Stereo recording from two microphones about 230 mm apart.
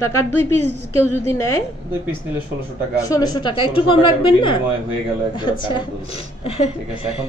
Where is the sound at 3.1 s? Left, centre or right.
Centre.